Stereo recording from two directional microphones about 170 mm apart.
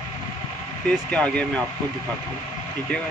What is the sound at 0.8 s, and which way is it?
Speech, 5° left (ahead or behind).